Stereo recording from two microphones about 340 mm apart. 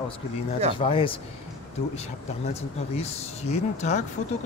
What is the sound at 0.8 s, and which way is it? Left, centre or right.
Speech, centre.